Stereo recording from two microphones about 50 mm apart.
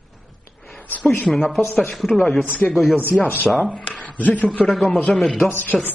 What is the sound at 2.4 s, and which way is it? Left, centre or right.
Speech, left.